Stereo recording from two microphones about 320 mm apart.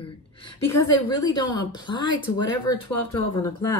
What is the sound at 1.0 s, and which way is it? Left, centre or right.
A woman's voice, centre.